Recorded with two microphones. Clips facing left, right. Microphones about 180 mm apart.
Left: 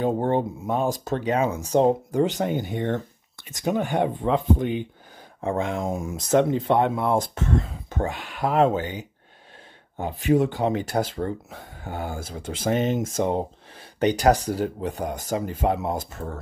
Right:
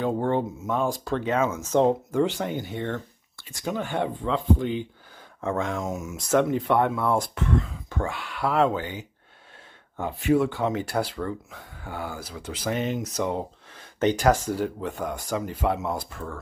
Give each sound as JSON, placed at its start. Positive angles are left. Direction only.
{"t": 0.6, "sound": "speech", "side_deg": 35}
{"t": 1.2, "sound": "speech", "side_deg": 15}
{"t": 1.5, "sound": "speech", "side_deg": 35}
{"t": 1.9, "sound": "speech", "side_deg": 15}
{"t": 5.8, "sound": "speech", "side_deg": 30}
{"t": 6.1, "sound": "speech", "side_deg": 20}
{"t": 7.3, "sound": "speech", "side_deg": 40}
{"t": 7.9, "sound": "speech", "side_deg": 20}
{"t": 10.9, "sound": "speech", "side_deg": 45}
{"t": 12.7, "sound": "speech", "side_deg": 20}
{"t": 14.3, "sound": "speech", "side_deg": 40}
{"t": 14.6, "sound": "speech", "side_deg": 20}
{"t": 15.0, "sound": "speech", "side_deg": 40}